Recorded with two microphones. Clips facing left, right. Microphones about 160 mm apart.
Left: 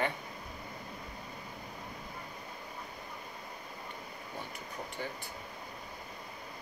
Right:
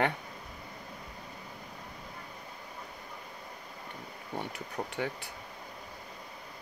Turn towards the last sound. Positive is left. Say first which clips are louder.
# right 5 dB
turn(degrees=-70)  # may be behind; listen again after turning